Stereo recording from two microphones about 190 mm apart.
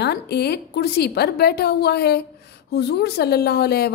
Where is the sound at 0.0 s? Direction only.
60° left (ahead or behind).